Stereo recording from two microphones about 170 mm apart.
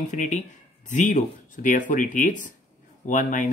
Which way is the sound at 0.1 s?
45° left (ahead or behind).